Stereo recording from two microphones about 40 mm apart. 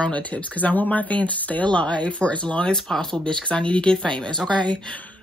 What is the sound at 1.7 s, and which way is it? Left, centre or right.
Speech, left.